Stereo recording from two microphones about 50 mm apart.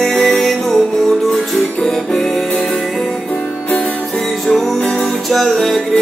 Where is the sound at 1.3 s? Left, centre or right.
Centre.